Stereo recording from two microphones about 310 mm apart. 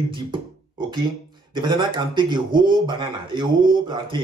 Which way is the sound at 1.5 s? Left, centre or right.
Centre.